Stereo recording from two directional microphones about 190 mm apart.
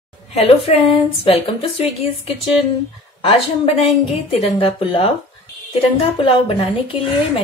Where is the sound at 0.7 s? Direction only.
35° left (ahead or behind).